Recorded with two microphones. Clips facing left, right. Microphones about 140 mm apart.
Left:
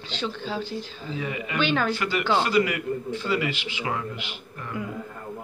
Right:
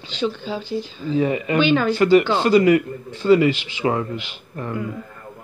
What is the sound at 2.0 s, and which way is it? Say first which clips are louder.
Speech: right 9 dB; 35° right (ahead or behind).